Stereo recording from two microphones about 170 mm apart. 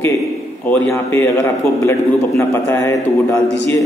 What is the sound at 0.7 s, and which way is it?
A man's voice, 15° left (ahead or behind).